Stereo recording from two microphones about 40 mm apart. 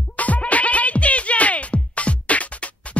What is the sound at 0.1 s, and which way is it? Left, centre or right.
Music, left.